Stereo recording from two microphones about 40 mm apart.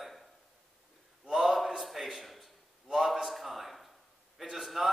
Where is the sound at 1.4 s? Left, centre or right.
Centre.